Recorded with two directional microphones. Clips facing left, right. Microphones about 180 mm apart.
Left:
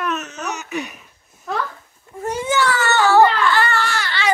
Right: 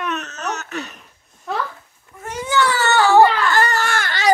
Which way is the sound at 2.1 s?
30° left (ahead or behind).